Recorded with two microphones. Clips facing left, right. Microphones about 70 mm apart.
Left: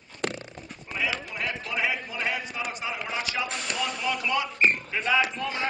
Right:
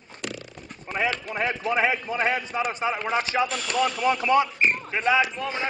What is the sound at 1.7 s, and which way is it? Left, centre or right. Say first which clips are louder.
A man's voice: right 6 dB; right.